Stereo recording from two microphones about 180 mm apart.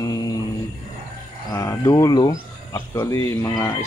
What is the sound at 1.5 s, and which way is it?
Speech, 15° left (ahead or behind).